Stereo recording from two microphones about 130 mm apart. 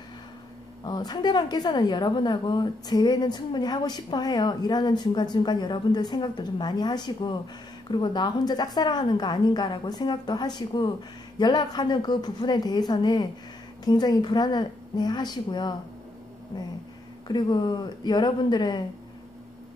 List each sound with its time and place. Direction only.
0.8 s a woman's voice: 35° left (ahead or behind)